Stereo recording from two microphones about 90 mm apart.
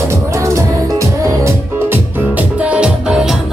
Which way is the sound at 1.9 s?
20° right (ahead or behind).